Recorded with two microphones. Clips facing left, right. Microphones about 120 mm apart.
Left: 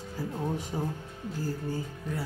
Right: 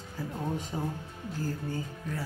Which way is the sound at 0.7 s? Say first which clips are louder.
Left 1 dB; centre (ahead or behind).